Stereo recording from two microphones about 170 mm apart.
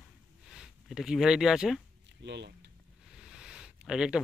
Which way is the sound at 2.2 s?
90° right.